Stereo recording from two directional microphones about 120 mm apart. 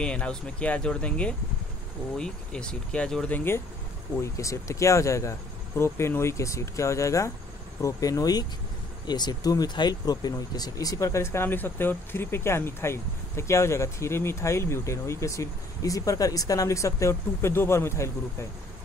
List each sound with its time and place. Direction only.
0.0 s speech: 10° left (ahead or behind)